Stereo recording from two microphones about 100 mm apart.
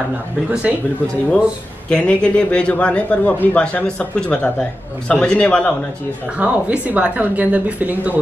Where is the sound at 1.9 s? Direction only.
10° left (ahead or behind).